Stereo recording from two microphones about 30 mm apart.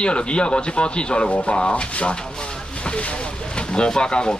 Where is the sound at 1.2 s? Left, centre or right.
Left.